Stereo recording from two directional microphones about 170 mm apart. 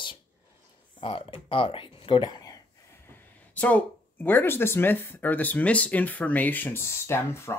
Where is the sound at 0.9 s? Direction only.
30° left (ahead or behind).